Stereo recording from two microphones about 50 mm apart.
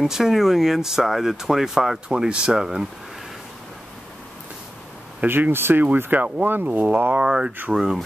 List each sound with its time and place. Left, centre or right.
0.0 s speech: centre
5.2 s speech: right
5.5 s speech: right
7.2 s speech: centre